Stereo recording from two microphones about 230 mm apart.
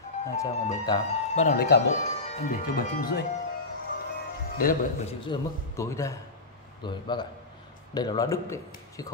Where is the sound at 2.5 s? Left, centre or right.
Left.